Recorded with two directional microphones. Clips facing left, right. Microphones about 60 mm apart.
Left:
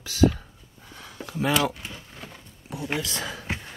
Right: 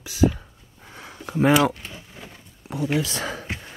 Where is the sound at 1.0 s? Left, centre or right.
Right.